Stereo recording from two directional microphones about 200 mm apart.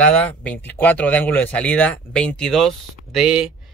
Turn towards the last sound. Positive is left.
turn(degrees=-5)  # may be behind; listen again after turning